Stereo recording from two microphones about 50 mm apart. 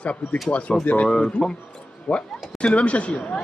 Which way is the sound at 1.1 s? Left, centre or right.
Centre.